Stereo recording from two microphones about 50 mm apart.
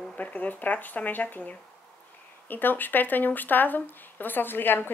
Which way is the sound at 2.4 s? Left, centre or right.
Left.